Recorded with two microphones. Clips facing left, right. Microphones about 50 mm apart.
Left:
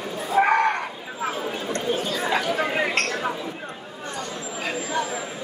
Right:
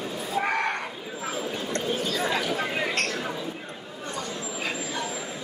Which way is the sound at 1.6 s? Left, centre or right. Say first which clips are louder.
Left 3 dB; left.